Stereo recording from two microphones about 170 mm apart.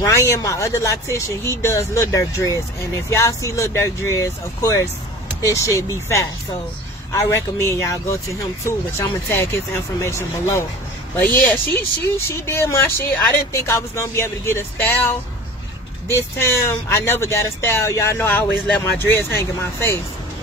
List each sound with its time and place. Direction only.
0.0 s speech: 15° left (ahead or behind)
16.9 s speech: 15° left (ahead or behind)